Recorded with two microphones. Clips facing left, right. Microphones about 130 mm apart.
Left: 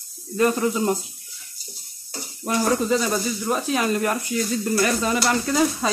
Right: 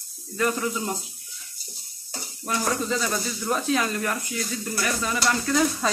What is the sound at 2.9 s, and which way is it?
Speech, 10° left (ahead or behind).